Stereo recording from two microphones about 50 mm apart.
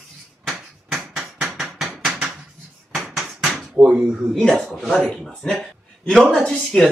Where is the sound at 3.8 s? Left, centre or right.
Centre.